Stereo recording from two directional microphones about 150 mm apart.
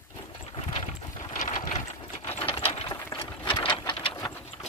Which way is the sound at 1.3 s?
55° left (ahead or behind).